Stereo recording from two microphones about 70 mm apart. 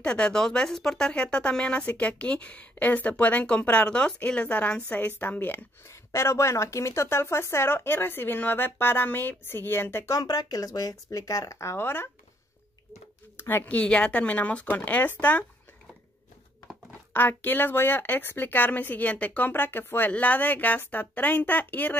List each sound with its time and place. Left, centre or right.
0.0 s speech: centre
5.9 s speech: left
10.0 s speech: left
13.4 s speech: left
13.7 s speech: centre
17.1 s speech: left